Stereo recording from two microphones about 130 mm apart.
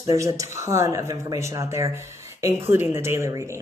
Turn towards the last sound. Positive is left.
turn(degrees=-25)  # may be behind; listen again after turning